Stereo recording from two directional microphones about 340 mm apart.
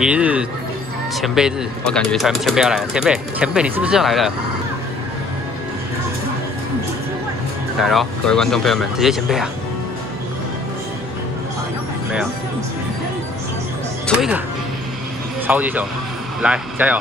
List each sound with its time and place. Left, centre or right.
0.0 s speech: centre
7.8 s speech: centre
14.0 s speech: centre
15.4 s speech: centre